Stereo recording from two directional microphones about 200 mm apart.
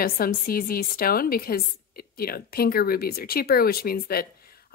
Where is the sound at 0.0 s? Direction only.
45° left (ahead or behind).